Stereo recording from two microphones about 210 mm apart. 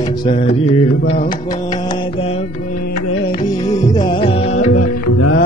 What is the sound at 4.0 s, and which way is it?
Music, 25° left (ahead or behind).